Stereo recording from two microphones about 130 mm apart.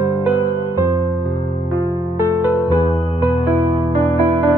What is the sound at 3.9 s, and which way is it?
Music, 15° left (ahead or behind).